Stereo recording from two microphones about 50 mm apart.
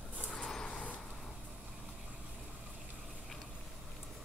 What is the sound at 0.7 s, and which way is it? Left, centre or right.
Vehicle, left.